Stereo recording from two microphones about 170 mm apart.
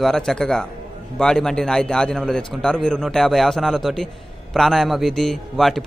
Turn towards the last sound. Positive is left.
turn(degrees=0)  # may be behind; listen again after turning